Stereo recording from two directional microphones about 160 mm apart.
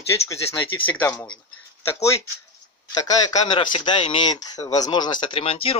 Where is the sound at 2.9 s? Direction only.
25° left (ahead or behind).